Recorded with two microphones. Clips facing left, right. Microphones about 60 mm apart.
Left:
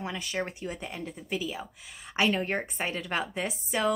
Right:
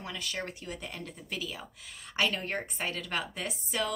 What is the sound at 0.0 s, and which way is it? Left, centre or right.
Speech, left.